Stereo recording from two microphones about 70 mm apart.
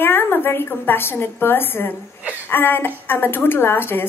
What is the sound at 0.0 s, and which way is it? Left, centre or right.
A woman's voice, left.